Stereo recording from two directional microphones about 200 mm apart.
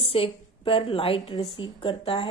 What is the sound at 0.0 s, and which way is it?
Speech, 30° left (ahead or behind).